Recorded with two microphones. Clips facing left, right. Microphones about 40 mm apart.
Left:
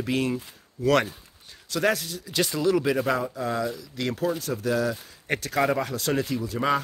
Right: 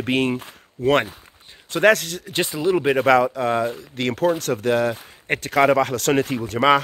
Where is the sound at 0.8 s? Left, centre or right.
Right.